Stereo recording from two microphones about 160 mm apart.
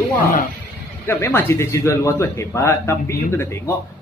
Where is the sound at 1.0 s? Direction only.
15° left (ahead or behind).